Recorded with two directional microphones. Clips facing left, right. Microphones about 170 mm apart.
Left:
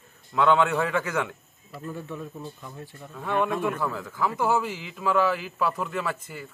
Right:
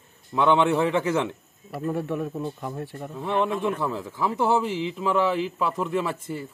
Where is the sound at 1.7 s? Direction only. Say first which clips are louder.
Right 8 dB; 70° right (ahead or behind).